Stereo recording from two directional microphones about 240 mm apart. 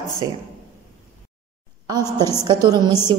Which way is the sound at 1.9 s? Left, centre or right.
Centre.